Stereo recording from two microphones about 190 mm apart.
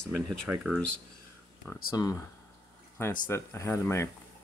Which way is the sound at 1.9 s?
20° left (ahead or behind).